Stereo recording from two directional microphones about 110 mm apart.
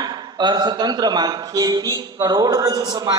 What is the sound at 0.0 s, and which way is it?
Speech, 40° right (ahead or behind).